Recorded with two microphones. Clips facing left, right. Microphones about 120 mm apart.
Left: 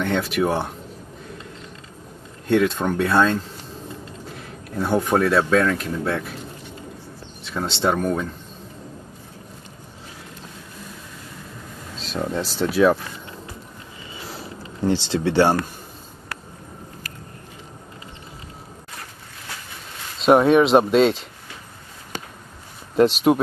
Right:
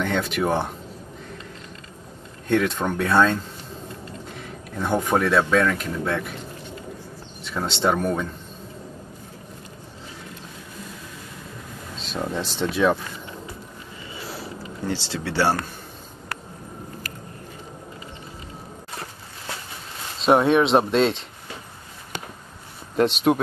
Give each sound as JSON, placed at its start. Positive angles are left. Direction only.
{"t": 0.0, "sound": "speech", "side_deg": 0}
{"t": 2.4, "sound": "speech", "side_deg": 5}
{"t": 4.7, "sound": "speech", "side_deg": 5}
{"t": 7.4, "sound": "speech", "side_deg": 0}
{"t": 12.0, "sound": "speech", "side_deg": 0}
{"t": 14.9, "sound": "speech", "side_deg": 20}
{"t": 20.2, "sound": "speech", "side_deg": 0}
{"t": 22.9, "sound": "speech", "side_deg": 0}